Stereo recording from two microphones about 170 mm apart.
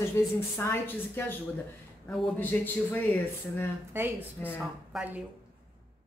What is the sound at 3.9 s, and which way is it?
Speech, 15° right (ahead or behind).